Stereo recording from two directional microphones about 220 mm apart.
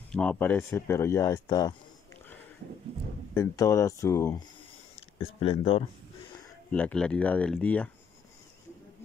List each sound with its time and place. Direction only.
0.1 s speech: 5° left (ahead or behind)
3.3 s speech: 15° left (ahead or behind)
5.2 s speech: 25° left (ahead or behind)
6.7 s speech: 5° left (ahead or behind)